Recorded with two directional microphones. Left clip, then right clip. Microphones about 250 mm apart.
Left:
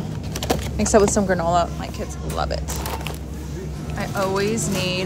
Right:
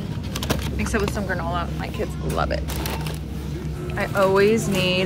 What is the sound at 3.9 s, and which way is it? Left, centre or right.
Speech, centre.